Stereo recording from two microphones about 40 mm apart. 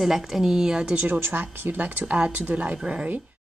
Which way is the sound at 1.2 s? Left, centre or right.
Right.